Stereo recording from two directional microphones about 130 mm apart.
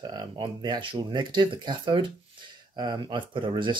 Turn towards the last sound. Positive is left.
turn(degrees=-40)  # may be behind; listen again after turning